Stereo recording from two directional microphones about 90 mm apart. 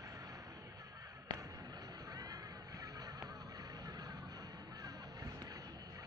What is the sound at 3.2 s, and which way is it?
Music, 40° right (ahead or behind).